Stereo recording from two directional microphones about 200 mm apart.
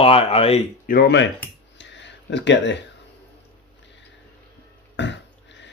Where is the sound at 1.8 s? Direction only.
65° left (ahead or behind).